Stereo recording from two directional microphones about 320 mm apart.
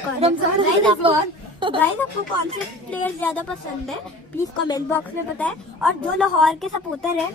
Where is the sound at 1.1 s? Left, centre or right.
Centre.